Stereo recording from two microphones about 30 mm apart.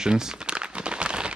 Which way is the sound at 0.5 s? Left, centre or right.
Right.